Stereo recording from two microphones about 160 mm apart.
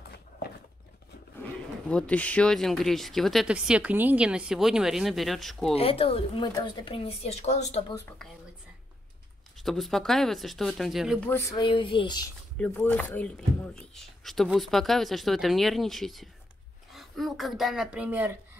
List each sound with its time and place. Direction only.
1.9 s speech: 5° left (ahead or behind)
5.8 s a woman's voice: 35° left (ahead or behind)
9.6 s speech: centre (ahead or behind)
11.2 s speech: 15° left (ahead or behind)
11.5 s a woman's voice: 30° left (ahead or behind)
12.5 s speech: 10° left (ahead or behind); by 18.3 s 10° right (ahead or behind)